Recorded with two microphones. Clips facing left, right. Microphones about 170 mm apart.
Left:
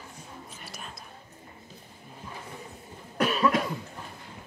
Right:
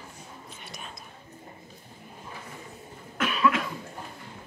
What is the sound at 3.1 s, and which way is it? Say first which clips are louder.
Cough: left 1 dB; 40° left (ahead or behind).